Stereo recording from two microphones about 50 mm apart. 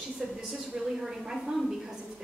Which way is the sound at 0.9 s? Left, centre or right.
Centre.